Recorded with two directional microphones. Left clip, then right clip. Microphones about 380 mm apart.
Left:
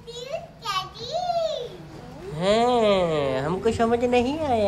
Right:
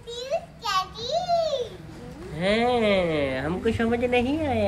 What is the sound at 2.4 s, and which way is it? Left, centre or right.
Speech, centre.